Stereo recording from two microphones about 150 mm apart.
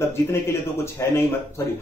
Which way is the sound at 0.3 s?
15° left (ahead or behind).